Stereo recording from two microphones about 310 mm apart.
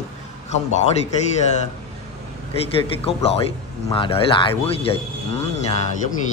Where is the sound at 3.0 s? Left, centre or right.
Centre.